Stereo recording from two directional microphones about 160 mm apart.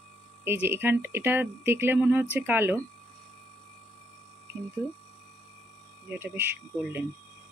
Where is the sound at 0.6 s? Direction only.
15° right (ahead or behind).